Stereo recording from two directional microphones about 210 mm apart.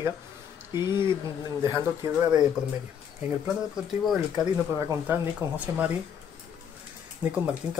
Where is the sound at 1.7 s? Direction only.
15° right (ahead or behind).